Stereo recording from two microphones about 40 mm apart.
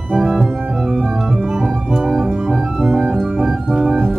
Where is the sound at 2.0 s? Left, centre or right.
Centre.